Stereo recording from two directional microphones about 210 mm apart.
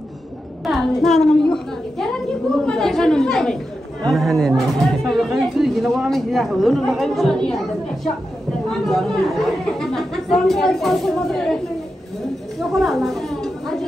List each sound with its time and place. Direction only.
0.7 s speech: centre (ahead or behind)
8.8 s speech: centre (ahead or behind)
12.5 s a woman's voice: centre (ahead or behind)